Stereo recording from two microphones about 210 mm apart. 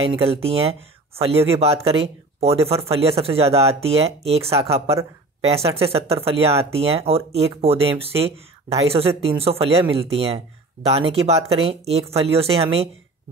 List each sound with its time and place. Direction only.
0.1 s speech: 25° right (ahead or behind)
5.5 s speech: 25° right (ahead or behind)